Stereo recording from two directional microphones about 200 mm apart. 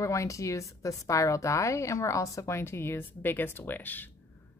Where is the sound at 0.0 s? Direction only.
15° left (ahead or behind).